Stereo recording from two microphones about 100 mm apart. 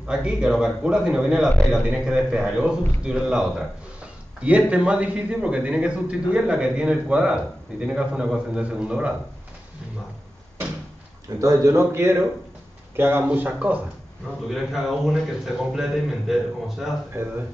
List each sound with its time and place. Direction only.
0.0 s a man's voice: 10° right (ahead or behind)
11.4 s a man's voice: 30° right (ahead or behind)
14.5 s a man's voice: 5° right (ahead or behind)
17.1 s a man's voice: 25° right (ahead or behind)